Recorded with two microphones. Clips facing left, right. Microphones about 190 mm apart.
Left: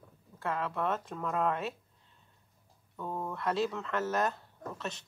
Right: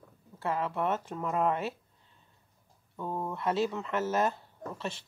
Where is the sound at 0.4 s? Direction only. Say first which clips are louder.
Right 2 dB; 5° right (ahead or behind).